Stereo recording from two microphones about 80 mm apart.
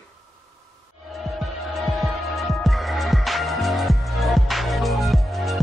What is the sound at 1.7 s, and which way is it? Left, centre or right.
Music, centre.